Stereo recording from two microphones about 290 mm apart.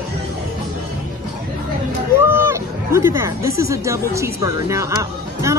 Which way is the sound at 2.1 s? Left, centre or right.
Centre.